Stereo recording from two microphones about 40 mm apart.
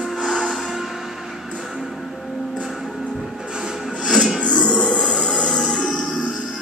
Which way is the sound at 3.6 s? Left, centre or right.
Centre.